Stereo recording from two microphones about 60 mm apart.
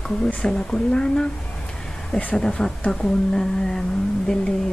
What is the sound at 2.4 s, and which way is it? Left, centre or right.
A woman's voice, centre.